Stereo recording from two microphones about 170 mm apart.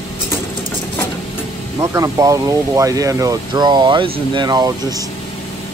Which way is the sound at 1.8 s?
20° right (ahead or behind).